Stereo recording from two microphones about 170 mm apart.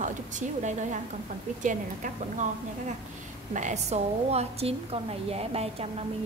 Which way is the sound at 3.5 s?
45° right (ahead or behind).